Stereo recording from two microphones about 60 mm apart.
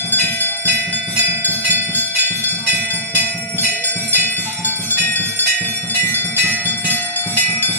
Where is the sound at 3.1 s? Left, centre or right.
Left.